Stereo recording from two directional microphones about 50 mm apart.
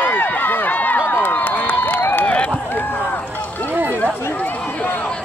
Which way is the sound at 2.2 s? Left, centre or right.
Left.